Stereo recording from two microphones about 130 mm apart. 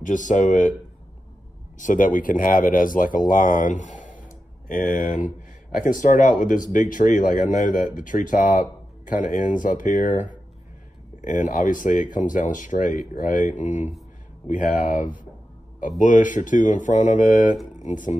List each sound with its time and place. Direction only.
0.0 s speech: 75° left (ahead or behind)
1.8 s speech: 85° left; by 13.9 s 70° left (ahead or behind)
14.5 s speech: 90° left
16.0 s speech: 80° left